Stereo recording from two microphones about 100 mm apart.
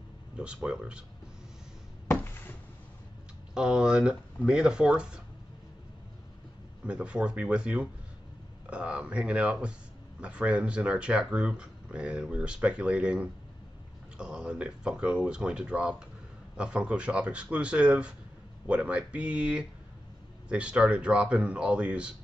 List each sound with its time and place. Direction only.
0.4 s speech: 10° right (ahead or behind)
2.0 s a sound: 25° left (ahead or behind)
3.5 s speech: 5° right (ahead or behind)
6.9 s speech: 10° right (ahead or behind)